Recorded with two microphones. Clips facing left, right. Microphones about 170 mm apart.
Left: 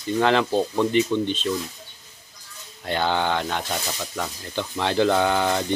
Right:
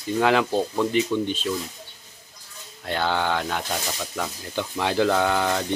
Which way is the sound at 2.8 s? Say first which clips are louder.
Left 1 dB; centre (ahead or behind).